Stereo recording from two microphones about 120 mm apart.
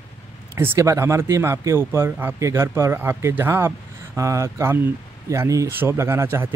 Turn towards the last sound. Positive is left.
turn(degrees=-20)  # may be behind; listen again after turning